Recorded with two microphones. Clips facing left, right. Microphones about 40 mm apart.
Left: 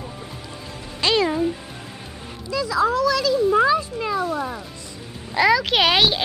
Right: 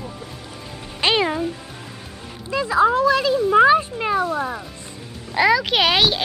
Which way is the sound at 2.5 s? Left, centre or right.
Right.